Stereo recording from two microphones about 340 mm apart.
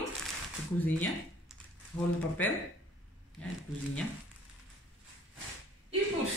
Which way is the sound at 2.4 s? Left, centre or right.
Centre.